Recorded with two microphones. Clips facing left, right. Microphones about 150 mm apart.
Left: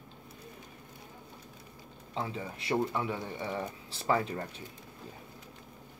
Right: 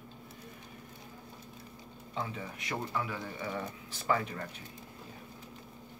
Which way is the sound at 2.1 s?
30° left (ahead or behind).